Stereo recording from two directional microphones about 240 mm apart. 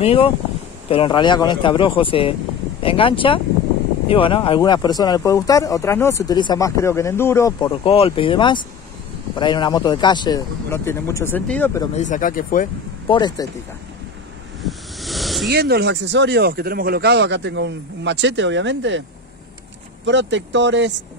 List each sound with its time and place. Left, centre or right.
0.0 s speech: left
11.9 s speech: left
13.1 s speech: centre
14.6 s vehicle: centre
15.5 s speech: right
20.1 s speech: right